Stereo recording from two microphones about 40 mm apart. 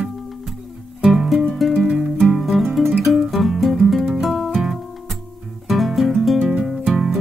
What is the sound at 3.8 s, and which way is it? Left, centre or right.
Music, centre.